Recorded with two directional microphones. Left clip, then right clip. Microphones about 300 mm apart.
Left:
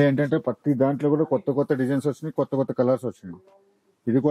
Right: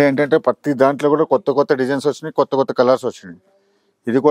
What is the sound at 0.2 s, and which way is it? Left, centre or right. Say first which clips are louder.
Speech: right 9 dB; centre.